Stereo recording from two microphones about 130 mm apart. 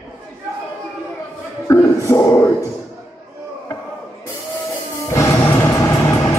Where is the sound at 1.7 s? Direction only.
20° left (ahead or behind).